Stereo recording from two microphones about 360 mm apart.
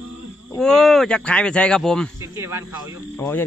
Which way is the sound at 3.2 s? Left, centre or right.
Centre.